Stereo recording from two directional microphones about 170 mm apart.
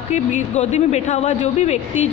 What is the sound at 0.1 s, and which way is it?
Speech, 45° left (ahead or behind).